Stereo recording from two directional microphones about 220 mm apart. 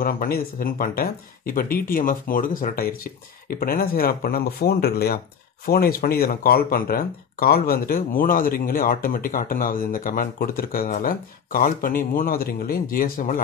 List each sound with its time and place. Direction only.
0.0 s speech: 40° left (ahead or behind)